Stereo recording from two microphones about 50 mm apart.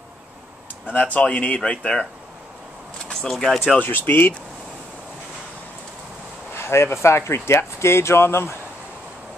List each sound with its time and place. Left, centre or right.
0.9 s speech: left
3.1 s speech: centre
3.8 s speech: left
6.5 s speech: left